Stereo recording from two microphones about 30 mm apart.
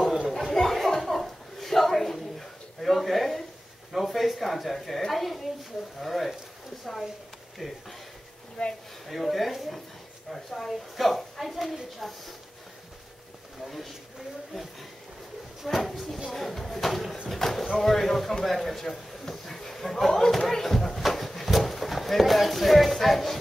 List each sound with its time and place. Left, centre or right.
0.3 s chuckle: centre
3.9 s a sound: centre
5.9 s a woman's voice: centre
7.6 s speech: centre
8.6 s speech: left
9.0 s a woman's voice: centre
14.5 s a woman's voice: centre
21.1 s a sound: centre
21.7 s speech: centre